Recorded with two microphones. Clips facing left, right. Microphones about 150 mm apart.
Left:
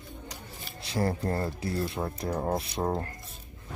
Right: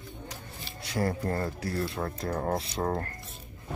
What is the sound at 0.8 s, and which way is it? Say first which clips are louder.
Speech: left 1 dB; 25° left (ahead or behind).